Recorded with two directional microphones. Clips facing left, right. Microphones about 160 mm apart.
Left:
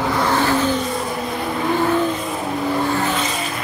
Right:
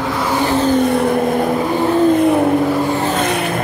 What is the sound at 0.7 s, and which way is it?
Vehicle, 60° right (ahead or behind).